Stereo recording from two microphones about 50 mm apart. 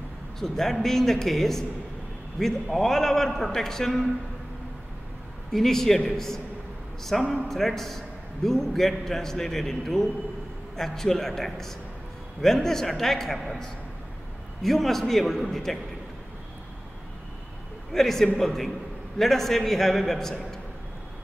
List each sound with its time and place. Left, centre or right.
0.4 s a man's voice: centre
5.5 s a man's voice: centre
17.9 s a man's voice: centre